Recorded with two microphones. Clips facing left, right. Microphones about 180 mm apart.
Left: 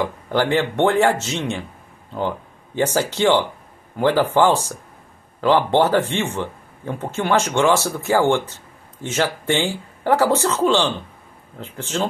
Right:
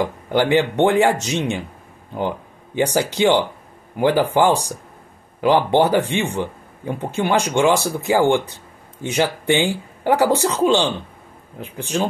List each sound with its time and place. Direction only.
0.0 s speech: 15° right (ahead or behind)